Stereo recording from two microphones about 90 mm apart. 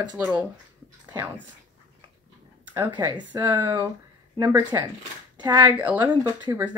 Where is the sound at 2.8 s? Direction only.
55° right (ahead or behind).